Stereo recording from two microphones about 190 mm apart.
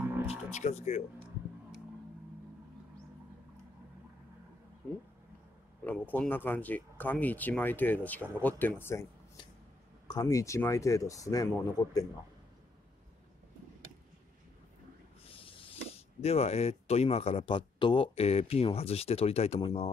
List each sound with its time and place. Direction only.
0.3 s music: 35° left (ahead or behind)
5.9 s speech: 10° left (ahead or behind)
10.0 s speech: 20° left (ahead or behind)
15.2 s speech: 30° left (ahead or behind)